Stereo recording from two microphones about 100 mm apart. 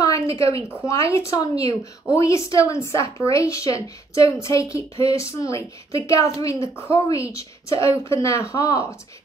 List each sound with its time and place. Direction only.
0.0 s a sound: 30° left (ahead or behind)
0.8 s speech: 30° left (ahead or behind)
1.6 s speech: 75° right (ahead or behind)
2.1 s speech: 30° left (ahead or behind)